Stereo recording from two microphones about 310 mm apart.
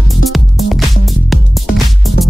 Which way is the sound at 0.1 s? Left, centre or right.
Centre.